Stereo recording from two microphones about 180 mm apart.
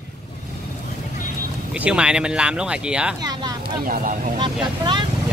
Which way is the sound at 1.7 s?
5° right (ahead or behind).